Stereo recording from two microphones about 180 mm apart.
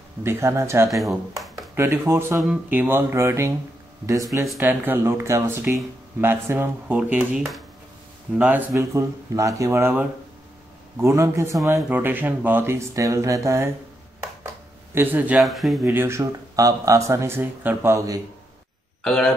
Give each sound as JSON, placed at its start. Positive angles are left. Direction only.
{"t": 0.2, "sound": "speech", "side_deg": -15}
{"t": 0.8, "sound": "speech", "side_deg": 0}
{"t": 1.8, "sound": "speech", "side_deg": -15}
{"t": 15.0, "sound": "speech", "side_deg": -10}
{"t": 15.9, "sound": "speech", "side_deg": -15}
{"t": 19.0, "sound": "speech", "side_deg": 5}